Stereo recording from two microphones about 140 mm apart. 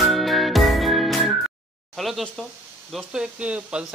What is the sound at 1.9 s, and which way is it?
Speech, centre (ahead or behind).